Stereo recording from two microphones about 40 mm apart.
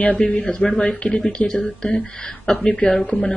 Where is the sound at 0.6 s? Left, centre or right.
Left.